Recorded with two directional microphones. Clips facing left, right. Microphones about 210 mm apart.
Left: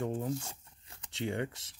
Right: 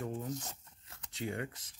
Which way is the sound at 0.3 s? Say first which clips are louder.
Left 4 dB; 10° left (ahead or behind).